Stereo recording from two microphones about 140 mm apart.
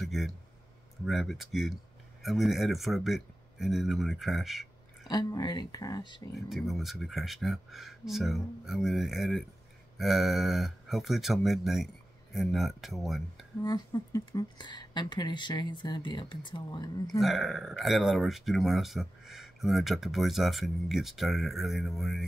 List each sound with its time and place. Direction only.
0.0 s speech: centre (ahead or behind)
5.0 s speech: 30° left (ahead or behind)
6.3 s speech: centre (ahead or behind)
13.7 s speech: 25° left (ahead or behind)
17.2 s speech: centre (ahead or behind)